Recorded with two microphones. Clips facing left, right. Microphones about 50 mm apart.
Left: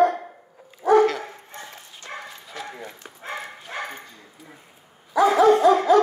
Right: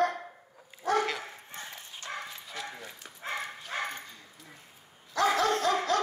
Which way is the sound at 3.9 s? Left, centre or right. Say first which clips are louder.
Left 3 dB; centre.